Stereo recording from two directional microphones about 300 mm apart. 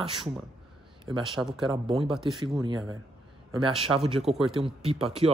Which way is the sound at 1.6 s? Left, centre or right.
Centre.